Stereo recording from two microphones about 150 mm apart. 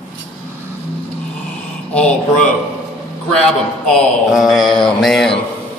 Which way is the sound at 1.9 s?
5° left (ahead or behind).